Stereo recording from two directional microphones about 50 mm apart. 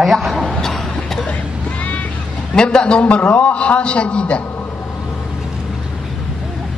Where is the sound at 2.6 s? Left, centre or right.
Centre.